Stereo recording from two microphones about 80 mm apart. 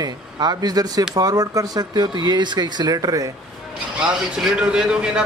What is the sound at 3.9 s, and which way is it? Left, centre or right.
A man's voice, centre.